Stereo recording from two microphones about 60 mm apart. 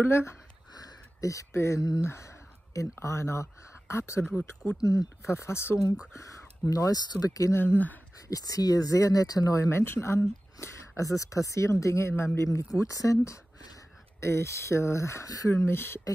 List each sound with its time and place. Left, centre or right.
0.0 s speech: left
0.7 s a sound: left
1.5 s speech: left
4.2 s speech: left
4.8 s speech: left
5.3 s speech: left
6.7 s speech: left
7.5 s speech: left
8.3 s speech: left
9.7 s speech: left
11.0 s speech: left
12.6 s speech: left
14.2 s speech: left
15.5 s speech: left